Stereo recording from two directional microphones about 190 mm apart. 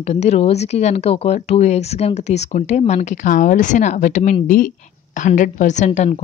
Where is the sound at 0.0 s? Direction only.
35° left (ahead or behind).